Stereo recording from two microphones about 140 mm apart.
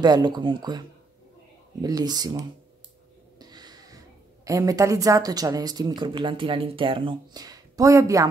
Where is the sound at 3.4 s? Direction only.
30° right (ahead or behind).